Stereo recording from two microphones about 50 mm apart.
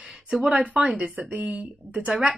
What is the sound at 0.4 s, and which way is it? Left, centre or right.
Speech, right.